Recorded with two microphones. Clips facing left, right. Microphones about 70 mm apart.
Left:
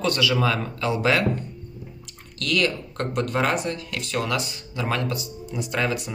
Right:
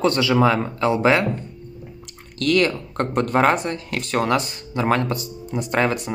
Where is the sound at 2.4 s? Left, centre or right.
Right.